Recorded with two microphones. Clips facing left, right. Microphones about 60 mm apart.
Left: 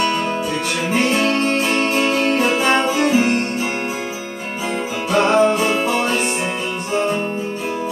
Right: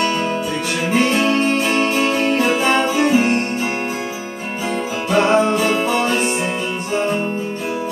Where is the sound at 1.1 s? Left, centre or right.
Centre.